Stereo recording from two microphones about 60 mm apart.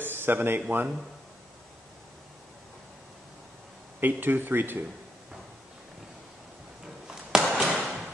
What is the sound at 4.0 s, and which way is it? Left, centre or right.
Speech, right.